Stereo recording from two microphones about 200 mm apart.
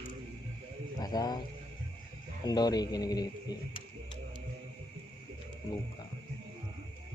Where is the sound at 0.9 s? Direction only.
20° left (ahead or behind).